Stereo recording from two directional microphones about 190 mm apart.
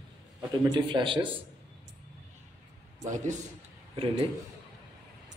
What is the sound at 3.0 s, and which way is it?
Speech, 40° right (ahead or behind).